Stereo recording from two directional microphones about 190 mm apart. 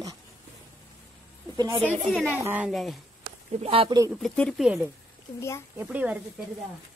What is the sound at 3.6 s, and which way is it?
Speech, 30° right (ahead or behind).